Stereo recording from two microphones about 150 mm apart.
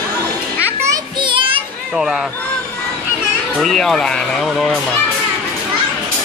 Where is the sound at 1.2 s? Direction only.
35° right (ahead or behind).